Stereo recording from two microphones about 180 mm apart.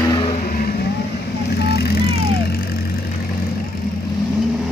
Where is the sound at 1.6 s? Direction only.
60° left (ahead or behind).